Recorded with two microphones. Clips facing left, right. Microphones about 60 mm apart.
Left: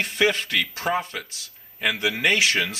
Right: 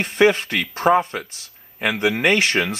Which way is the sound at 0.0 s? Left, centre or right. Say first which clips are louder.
Right 6 dB; right.